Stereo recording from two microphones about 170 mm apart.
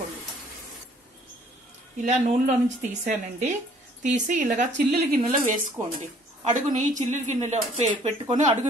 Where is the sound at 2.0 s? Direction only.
45° right (ahead or behind).